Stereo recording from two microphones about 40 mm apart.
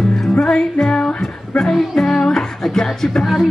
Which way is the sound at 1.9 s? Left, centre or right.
Centre.